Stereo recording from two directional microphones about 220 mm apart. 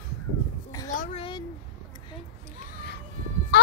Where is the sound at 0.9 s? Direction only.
35° left (ahead or behind).